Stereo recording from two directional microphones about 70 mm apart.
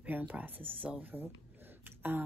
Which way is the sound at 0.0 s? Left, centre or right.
Right.